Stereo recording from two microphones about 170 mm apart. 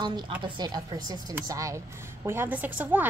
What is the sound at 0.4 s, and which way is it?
A woman's voice, 25° right (ahead or behind).